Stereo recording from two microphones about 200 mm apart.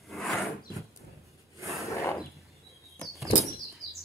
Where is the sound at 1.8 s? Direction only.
15° left (ahead or behind).